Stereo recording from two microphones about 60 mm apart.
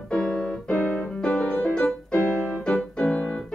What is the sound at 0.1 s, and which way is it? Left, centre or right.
Keyboard, centre.